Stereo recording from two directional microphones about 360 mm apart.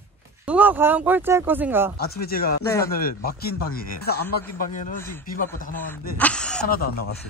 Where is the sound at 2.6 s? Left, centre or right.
Centre.